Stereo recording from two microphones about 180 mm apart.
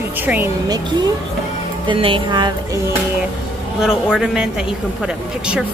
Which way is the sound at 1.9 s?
30° right (ahead or behind).